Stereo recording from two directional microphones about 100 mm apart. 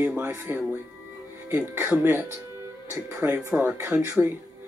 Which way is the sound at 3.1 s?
20° right (ahead or behind).